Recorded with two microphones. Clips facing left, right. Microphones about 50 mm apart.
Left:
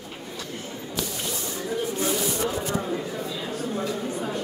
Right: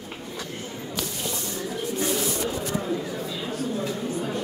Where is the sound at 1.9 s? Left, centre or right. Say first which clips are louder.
Right 3 dB; centre.